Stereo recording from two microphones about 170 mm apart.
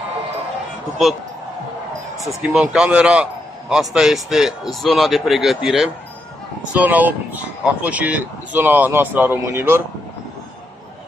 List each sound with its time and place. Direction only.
2.4 s a man's voice: 5° right (ahead or behind)